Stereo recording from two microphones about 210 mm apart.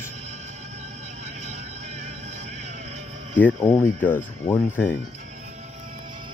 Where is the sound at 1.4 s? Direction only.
30° right (ahead or behind).